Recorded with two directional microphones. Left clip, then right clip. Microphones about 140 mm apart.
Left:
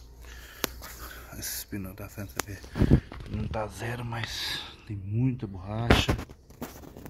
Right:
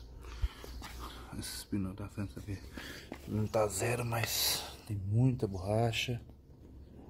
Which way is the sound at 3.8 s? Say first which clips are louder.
Right 1 dB; 25° right (ahead or behind).